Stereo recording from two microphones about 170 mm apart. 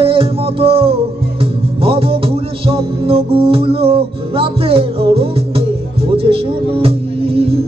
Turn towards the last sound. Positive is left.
turn(degrees=-35)  # may be behind; listen again after turning